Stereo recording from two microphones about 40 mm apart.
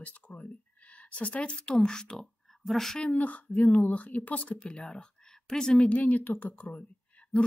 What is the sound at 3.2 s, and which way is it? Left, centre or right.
Speech, left.